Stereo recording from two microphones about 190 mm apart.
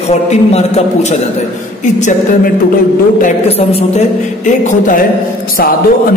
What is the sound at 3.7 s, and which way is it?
Speech, 35° left (ahead or behind).